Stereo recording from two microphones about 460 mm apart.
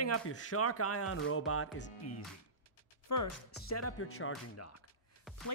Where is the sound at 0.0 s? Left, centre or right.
Left.